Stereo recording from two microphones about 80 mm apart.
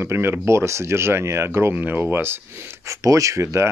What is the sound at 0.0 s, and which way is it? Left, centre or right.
Speech, right.